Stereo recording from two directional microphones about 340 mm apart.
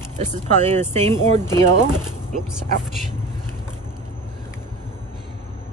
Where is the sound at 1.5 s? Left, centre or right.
Centre.